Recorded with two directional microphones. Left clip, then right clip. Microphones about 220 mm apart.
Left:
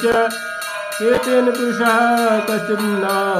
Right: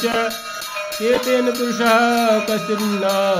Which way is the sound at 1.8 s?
55° right (ahead or behind).